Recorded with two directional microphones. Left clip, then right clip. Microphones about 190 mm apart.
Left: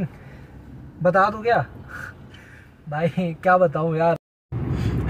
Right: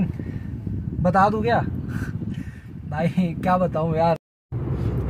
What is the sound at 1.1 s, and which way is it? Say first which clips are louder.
Speech: even; 15° right (ahead or behind).